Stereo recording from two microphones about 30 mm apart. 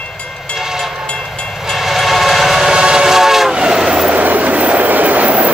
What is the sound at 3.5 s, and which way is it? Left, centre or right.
Train, right.